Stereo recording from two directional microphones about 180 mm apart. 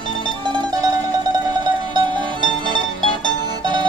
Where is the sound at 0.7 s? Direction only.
20° right (ahead or behind).